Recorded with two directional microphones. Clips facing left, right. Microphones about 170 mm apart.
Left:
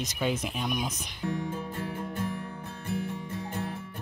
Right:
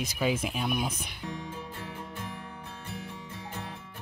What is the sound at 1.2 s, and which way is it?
Music, 50° left (ahead or behind).